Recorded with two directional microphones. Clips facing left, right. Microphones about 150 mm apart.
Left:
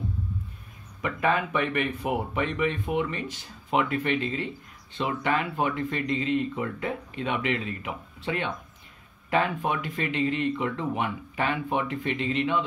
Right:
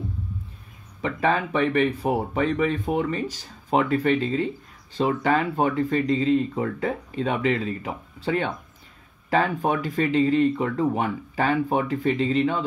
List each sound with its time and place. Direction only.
1.0 s speech: 30° right (ahead or behind)